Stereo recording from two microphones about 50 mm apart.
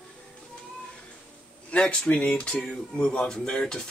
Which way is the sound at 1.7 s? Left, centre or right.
Centre.